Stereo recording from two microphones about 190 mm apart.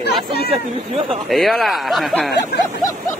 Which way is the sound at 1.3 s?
Centre (ahead or behind).